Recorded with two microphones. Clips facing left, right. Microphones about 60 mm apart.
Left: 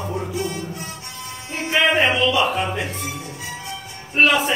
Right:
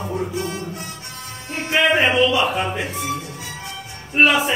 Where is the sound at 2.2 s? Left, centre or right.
Centre.